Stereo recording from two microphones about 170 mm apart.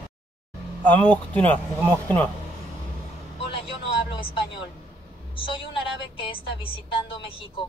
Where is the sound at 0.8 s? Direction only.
10° left (ahead or behind).